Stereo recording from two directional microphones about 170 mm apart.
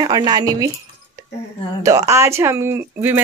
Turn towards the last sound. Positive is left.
turn(degrees=-15)  # may be behind; listen again after turning